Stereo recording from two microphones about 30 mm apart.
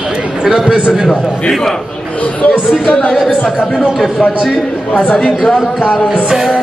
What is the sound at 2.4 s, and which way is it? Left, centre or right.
Speech, left.